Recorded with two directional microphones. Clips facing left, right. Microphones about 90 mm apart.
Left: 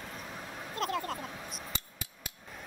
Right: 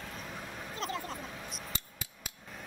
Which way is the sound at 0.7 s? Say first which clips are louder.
Left 5 dB; 60° left (ahead or behind).